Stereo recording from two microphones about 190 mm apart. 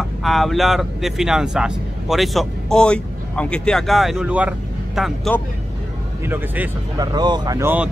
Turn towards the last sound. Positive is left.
turn(degrees=-10)  # may be behind; listen again after turning